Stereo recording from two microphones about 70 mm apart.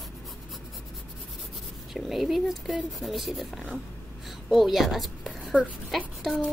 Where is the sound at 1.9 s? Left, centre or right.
Centre.